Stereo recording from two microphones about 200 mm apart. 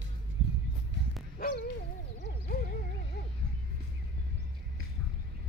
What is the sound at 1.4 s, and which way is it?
Dog, 45° left (ahead or behind).